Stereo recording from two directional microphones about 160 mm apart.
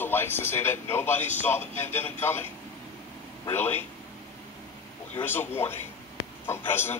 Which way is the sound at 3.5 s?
15° left (ahead or behind).